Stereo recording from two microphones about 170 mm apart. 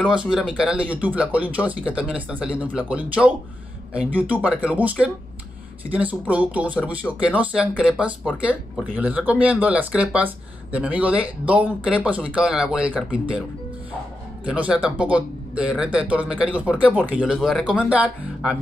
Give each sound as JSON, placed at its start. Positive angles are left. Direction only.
{"t": 0.3, "sound": "speech", "side_deg": -5}
{"t": 14.4, "sound": "speech", "side_deg": -5}